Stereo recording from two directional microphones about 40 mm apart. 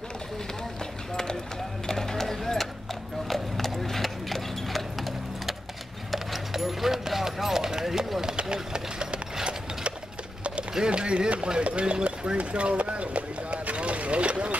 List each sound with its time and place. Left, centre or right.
1.9 s a sound: centre
3.3 s clip-clop: centre; by 9.9 s right
10.7 s speech: centre